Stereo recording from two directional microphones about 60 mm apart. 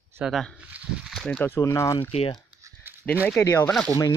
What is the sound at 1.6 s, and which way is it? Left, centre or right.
Speech, left.